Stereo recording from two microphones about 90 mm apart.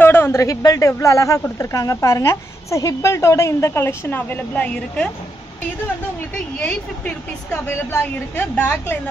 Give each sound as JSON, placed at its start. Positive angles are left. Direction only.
{"t": 0.0, "sound": "a woman's voice", "side_deg": 25}
{"t": 6.3, "sound": "a woman's voice", "side_deg": 15}